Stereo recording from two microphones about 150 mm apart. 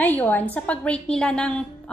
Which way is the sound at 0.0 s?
10° left (ahead or behind).